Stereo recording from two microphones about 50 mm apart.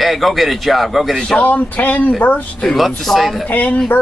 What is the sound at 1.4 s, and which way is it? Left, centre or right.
Speech, left.